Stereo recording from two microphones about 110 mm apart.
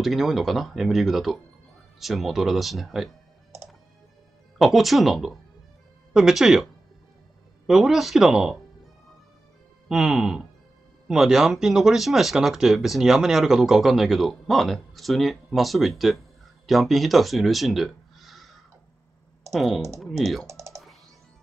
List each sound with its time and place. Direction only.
0.0 s speech: centre (ahead or behind)
4.6 s speech: centre (ahead or behind)
9.8 s speech: 5° right (ahead or behind)
19.5 s speech: centre (ahead or behind)
20.4 s typing: 25° right (ahead or behind)